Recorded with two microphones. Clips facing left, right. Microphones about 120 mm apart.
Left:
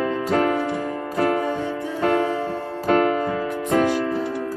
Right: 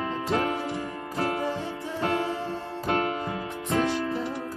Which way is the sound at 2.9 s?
40° left (ahead or behind).